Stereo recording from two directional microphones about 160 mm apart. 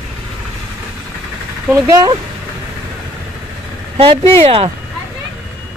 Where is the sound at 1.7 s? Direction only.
20° right (ahead or behind).